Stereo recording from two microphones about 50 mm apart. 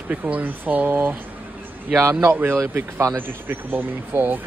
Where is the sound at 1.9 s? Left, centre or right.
Right.